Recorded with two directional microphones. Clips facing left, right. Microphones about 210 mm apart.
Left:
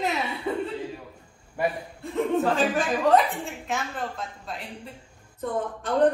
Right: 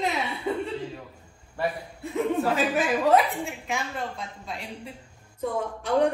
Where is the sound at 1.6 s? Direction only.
15° left (ahead or behind).